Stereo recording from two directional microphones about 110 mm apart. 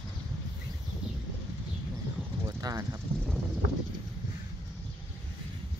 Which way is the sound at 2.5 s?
35° right (ahead or behind).